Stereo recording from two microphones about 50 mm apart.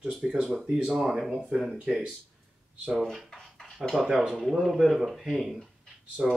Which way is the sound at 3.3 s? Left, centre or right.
Centre.